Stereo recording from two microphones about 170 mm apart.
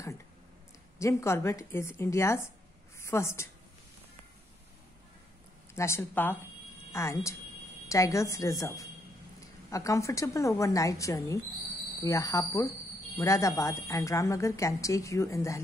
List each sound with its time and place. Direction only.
0.9 s a woman's voice: 15° left (ahead or behind)
5.8 s a woman's voice: 15° left (ahead or behind)